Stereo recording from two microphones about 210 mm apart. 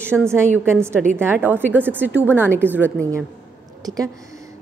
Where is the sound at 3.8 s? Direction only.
15° right (ahead or behind).